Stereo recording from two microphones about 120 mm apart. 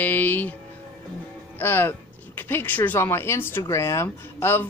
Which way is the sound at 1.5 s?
20° left (ahead or behind).